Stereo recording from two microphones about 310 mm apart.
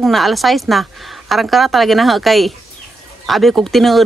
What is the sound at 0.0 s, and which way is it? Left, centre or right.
Speech, centre.